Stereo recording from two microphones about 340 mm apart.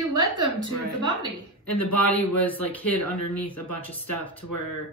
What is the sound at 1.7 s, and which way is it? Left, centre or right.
Speech, centre.